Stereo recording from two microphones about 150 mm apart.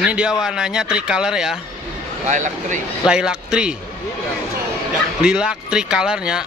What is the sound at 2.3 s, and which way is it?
Speech, 55° right (ahead or behind).